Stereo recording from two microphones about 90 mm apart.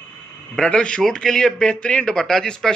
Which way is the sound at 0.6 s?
10° left (ahead or behind).